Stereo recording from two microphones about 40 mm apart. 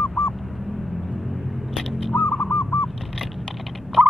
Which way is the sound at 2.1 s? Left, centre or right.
Left.